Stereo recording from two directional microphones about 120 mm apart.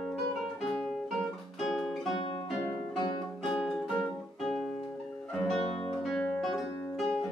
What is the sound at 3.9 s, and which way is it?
Guitar, centre (ahead or behind).